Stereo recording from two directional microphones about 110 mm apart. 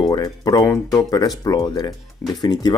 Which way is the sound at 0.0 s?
35° left (ahead or behind).